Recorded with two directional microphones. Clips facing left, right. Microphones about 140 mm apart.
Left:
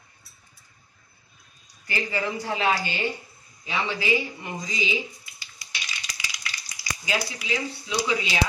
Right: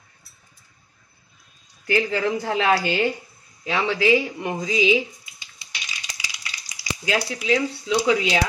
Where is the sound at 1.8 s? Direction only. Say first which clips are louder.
Right 7 dB; 90° right.